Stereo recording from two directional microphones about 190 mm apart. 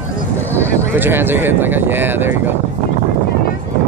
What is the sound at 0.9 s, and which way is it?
Speech, 10° right (ahead or behind).